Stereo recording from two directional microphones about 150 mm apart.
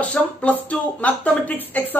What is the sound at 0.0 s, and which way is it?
A man's voice, 10° left (ahead or behind).